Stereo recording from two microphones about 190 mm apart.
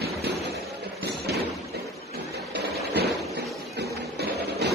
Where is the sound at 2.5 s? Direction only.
60° right (ahead or behind).